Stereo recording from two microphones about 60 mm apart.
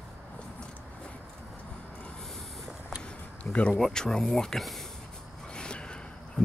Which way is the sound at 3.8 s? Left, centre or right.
Centre.